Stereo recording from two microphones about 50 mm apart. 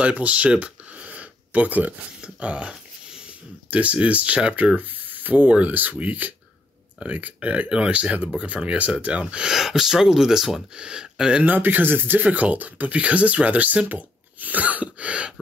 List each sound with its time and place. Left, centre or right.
0.0 s a sound: right
2.2 s speech: right; by 10.6 s centre
10.8 s speech: centre
11.4 s speech: right
12.2 s speech: right